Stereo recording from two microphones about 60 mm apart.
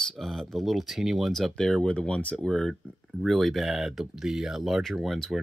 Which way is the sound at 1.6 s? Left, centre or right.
Centre.